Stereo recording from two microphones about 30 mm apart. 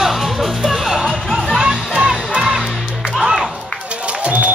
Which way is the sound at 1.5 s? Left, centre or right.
Right.